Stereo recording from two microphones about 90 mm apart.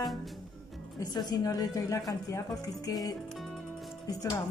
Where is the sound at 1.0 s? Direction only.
50° left (ahead or behind).